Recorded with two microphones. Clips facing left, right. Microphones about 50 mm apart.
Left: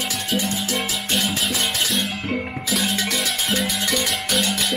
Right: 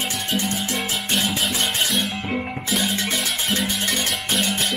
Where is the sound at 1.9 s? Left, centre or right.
Centre.